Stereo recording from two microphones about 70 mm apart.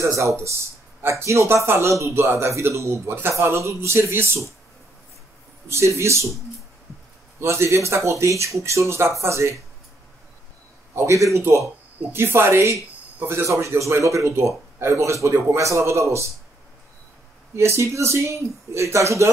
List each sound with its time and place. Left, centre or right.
0.0 s speech: right
5.7 s speech: right
7.3 s speech: right
11.0 s speech: right
17.6 s speech: right